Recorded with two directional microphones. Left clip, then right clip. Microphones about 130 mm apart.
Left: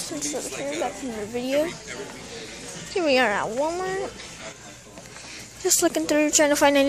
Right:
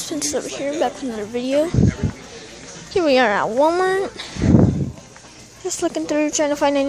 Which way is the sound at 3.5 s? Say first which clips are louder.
Right 9 dB; 40° right (ahead or behind).